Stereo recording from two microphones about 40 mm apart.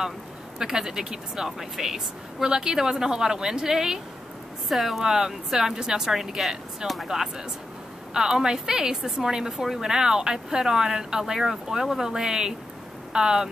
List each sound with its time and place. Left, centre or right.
0.6 s speech: centre